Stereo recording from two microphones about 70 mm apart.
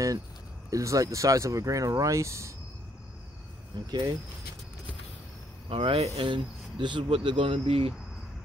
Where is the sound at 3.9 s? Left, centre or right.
Right.